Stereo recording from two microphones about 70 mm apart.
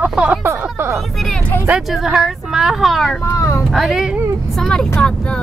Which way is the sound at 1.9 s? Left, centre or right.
Centre.